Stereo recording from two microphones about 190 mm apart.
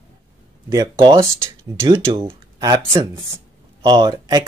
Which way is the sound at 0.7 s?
20° right (ahead or behind).